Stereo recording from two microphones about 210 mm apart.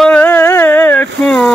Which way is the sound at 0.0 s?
5° left (ahead or behind).